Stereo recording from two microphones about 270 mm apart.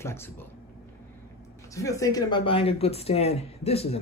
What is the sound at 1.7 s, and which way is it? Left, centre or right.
A man's voice, centre.